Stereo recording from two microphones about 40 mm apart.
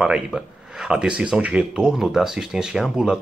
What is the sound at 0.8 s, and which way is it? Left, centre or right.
Speech, right.